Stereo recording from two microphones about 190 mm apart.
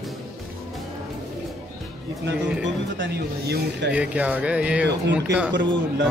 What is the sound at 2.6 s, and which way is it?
Speech, 70° right (ahead or behind).